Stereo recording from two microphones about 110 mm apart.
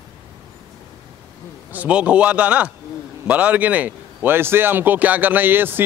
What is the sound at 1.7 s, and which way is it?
A man's voice, 10° right (ahead or behind).